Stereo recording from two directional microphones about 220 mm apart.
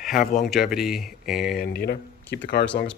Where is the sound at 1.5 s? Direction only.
45° left (ahead or behind).